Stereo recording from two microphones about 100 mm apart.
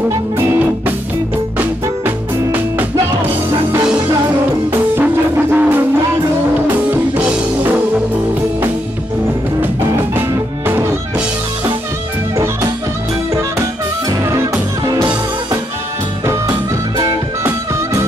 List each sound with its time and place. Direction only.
1.6 s music: 20° right (ahead or behind)
4.7 s music: 20° right (ahead or behind)
6.9 s music: 20° right (ahead or behind)
10.3 s music: 25° right (ahead or behind)